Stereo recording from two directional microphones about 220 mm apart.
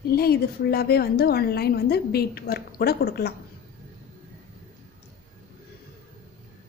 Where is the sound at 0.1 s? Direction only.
45° left (ahead or behind).